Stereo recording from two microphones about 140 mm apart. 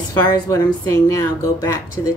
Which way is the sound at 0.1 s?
25° left (ahead or behind).